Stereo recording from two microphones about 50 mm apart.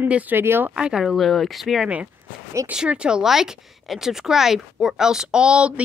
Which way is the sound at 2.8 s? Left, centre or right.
Centre.